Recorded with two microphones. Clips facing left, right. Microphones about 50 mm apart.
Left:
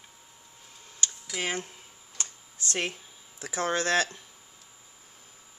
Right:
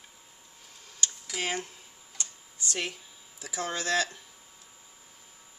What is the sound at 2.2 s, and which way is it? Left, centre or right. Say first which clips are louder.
Computer keyboard: left 1 dB; left.